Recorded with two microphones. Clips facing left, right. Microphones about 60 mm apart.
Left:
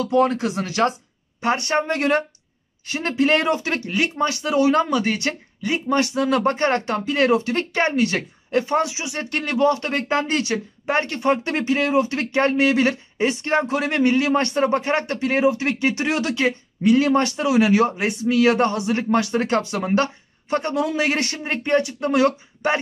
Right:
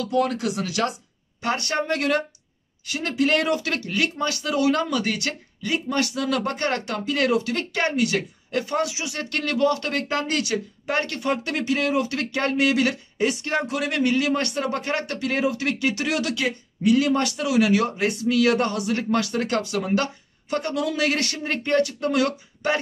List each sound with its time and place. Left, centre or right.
0.0 s speech: left